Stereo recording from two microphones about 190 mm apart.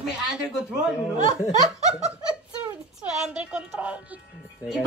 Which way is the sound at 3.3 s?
5° right (ahead or behind).